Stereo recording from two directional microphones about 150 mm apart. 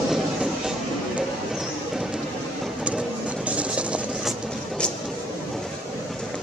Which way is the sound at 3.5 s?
10° right (ahead or behind).